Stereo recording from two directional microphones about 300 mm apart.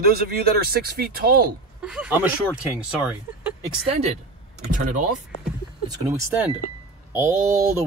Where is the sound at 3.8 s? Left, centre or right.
Right.